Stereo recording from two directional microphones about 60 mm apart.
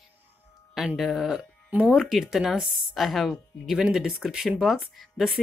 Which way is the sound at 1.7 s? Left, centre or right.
Right.